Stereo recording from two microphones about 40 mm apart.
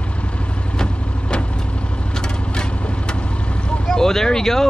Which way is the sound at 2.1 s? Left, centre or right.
Left.